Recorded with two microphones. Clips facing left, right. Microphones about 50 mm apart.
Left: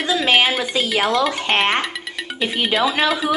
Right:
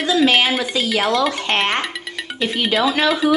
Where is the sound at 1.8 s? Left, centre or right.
Centre.